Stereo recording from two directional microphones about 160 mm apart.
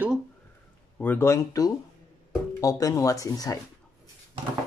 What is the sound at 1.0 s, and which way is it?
Speech, 15° left (ahead or behind).